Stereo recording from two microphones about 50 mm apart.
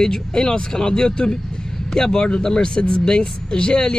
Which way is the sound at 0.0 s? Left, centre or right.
Centre.